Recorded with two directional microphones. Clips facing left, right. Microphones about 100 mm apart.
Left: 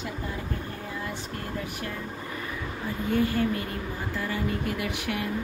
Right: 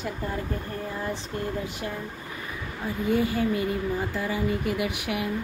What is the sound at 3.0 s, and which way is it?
Speech, 15° right (ahead or behind).